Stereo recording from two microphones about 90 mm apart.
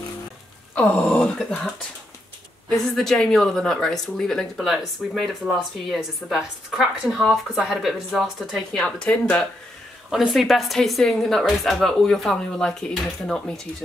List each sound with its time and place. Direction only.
1.1 s speech: 10° left (ahead or behind)
2.7 s a woman's voice: 5° left (ahead or behind)
8.8 s speech: 15° left (ahead or behind)
10.0 s a woman's voice: 5° right (ahead or behind)